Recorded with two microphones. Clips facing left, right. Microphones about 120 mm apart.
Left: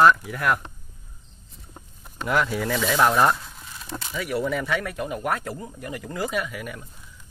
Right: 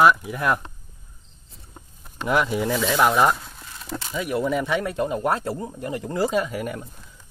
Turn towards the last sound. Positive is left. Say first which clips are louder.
# right 5 dB
turn(degrees=-35)  # may be behind; listen again after turning